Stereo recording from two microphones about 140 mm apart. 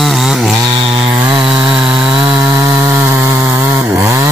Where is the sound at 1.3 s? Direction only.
5° right (ahead or behind).